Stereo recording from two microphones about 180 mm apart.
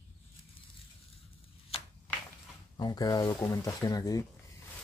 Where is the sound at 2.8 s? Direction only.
20° left (ahead or behind).